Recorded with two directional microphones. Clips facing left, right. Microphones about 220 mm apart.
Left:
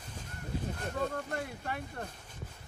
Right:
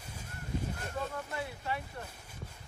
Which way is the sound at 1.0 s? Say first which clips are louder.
Left 4 dB; 50° left (ahead or behind).